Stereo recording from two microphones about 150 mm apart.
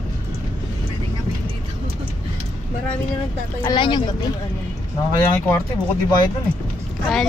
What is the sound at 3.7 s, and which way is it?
Speech, 35° left (ahead or behind).